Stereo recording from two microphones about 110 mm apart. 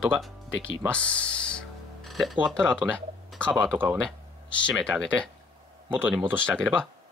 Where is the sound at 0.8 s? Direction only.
10° left (ahead or behind).